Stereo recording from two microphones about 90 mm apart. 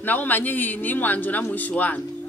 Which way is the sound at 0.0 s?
20° left (ahead or behind).